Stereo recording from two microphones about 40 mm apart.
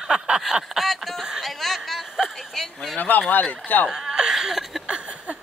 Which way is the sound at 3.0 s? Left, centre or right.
Left.